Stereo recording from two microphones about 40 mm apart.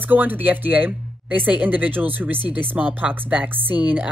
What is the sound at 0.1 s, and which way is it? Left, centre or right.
A woman's voice, right.